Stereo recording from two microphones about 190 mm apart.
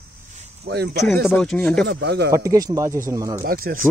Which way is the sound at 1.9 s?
60° right (ahead or behind).